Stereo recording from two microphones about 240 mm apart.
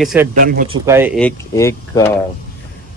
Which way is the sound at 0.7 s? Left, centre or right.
Centre.